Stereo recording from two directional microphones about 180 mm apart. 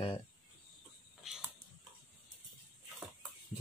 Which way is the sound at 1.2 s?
Centre (ahead or behind).